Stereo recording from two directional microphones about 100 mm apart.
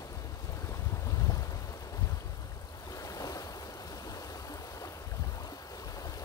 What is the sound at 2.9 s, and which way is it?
Waves, 35° left (ahead or behind).